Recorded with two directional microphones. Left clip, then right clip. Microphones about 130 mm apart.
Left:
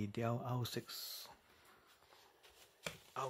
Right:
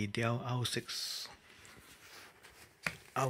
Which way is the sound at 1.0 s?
5° right (ahead or behind).